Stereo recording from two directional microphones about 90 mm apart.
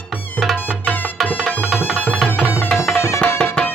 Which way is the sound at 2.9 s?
30° left (ahead or behind).